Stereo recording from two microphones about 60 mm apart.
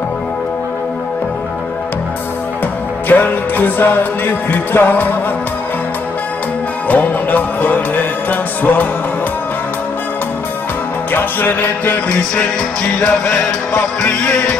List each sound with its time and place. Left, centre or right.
3.1 s music: left
6.9 s music: left
11.1 s music: left